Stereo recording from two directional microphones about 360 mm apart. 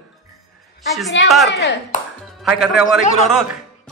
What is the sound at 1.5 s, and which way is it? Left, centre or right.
Speech, left.